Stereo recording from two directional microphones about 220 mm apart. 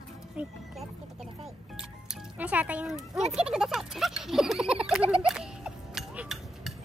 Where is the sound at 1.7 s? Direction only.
5° right (ahead or behind).